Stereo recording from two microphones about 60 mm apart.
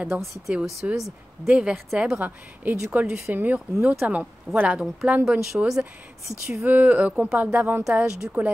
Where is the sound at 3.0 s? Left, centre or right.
Right.